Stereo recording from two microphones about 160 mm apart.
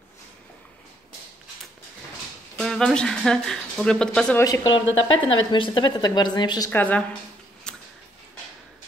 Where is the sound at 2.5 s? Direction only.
Centre (ahead or behind).